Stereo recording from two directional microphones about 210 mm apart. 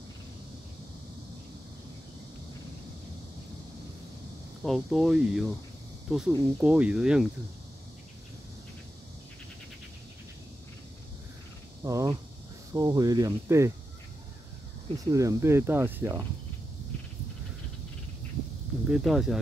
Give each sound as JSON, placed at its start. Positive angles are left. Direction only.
{"t": 4.6, "sound": "speech", "side_deg": 0}
{"t": 11.8, "sound": "speech", "side_deg": -15}
{"t": 15.1, "sound": "speech", "side_deg": -15}
{"t": 18.9, "sound": "speech", "side_deg": 0}